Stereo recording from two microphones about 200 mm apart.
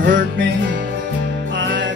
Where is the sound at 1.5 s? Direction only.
65° right (ahead or behind).